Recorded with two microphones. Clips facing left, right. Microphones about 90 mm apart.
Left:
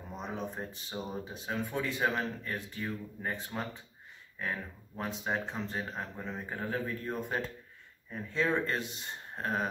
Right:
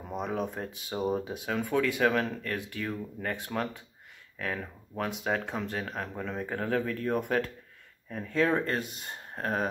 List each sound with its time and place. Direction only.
0.2 s speech: 60° right (ahead or behind)
0.8 s speech: 50° right (ahead or behind)
1.4 s speech: 70° right (ahead or behind)
8.1 s speech: 55° right (ahead or behind)
8.5 s speech: 45° right (ahead or behind)